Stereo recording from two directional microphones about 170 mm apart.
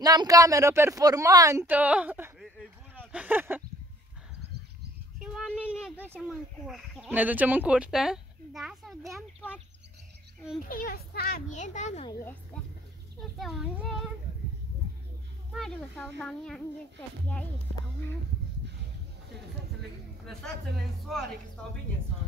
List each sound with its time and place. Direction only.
0.0 s a woman's voice: 20° right (ahead or behind)
2.4 s a sound: 5° left (ahead or behind)
3.1 s speech: 10° right (ahead or behind)
5.2 s a sound: 5° right (ahead or behind)
6.2 s speech: centre (ahead or behind)
10.7 s a child's voice: 60° left (ahead or behind)
11.5 s a child's voice: 45° left (ahead or behind)
13.2 s speech: centre (ahead or behind)
15.5 s speech: centre (ahead or behind)
20.2 s speech: centre (ahead or behind)